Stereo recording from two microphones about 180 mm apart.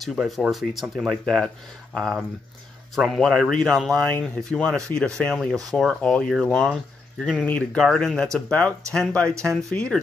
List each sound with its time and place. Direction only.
0.0 s speech: centre (ahead or behind)
9.3 s speech: 15° right (ahead or behind)
9.6 s speech: 5° left (ahead or behind)